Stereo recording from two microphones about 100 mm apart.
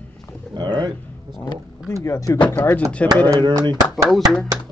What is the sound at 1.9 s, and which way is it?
Speech, 30° left (ahead or behind).